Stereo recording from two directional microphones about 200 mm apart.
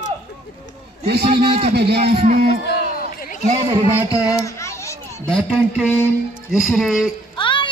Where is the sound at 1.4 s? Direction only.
30° right (ahead or behind).